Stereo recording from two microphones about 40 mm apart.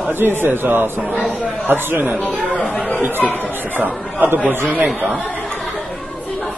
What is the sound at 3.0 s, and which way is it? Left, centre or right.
Speech, right.